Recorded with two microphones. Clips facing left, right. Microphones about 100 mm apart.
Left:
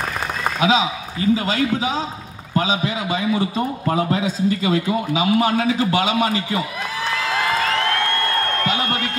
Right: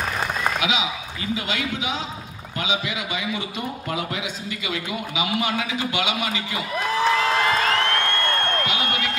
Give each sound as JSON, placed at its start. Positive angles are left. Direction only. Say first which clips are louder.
{"t": 0.6, "sound": "a man's voice", "louder": "left 6 dB", "side_deg": 35}